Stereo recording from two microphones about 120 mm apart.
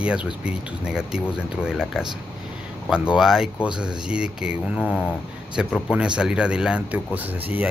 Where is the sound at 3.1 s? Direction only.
5° right (ahead or behind).